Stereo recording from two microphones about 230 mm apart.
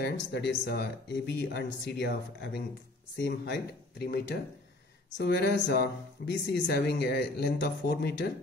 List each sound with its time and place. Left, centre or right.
0.0 s speech: left